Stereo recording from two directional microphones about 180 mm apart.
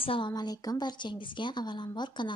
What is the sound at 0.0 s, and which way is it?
A woman's voice, 30° left (ahead or behind).